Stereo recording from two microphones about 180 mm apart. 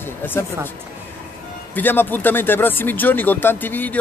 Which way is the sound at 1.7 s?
10° left (ahead or behind).